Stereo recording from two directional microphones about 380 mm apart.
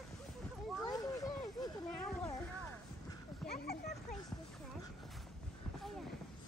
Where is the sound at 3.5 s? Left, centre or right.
Left.